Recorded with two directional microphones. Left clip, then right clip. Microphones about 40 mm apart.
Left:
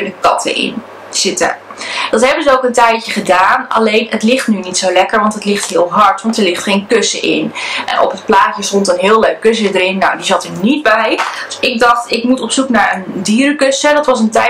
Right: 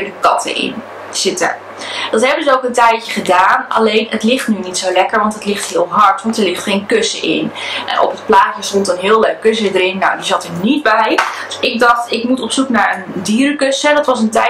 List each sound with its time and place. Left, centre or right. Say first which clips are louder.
0.2 s a woman's voice: left 1 dB; left